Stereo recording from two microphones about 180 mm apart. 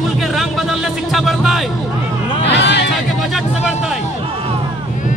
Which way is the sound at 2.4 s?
75° left (ahead or behind).